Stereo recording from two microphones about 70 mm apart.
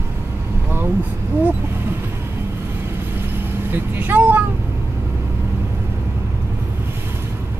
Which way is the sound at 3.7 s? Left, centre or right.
Right.